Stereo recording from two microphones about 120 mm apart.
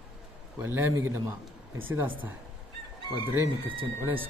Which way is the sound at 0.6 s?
15° right (ahead or behind).